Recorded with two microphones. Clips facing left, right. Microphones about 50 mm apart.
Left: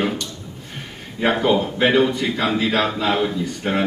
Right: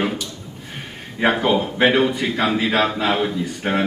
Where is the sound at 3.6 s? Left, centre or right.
Right.